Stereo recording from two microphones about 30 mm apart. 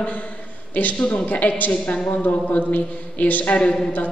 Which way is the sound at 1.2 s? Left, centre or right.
Left.